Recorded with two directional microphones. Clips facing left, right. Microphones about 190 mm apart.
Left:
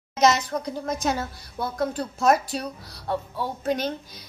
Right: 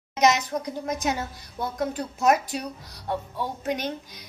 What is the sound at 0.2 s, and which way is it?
Speech, 15° right (ahead or behind).